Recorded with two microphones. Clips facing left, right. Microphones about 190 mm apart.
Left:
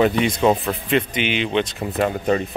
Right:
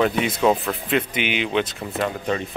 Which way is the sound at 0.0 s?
5° right (ahead or behind).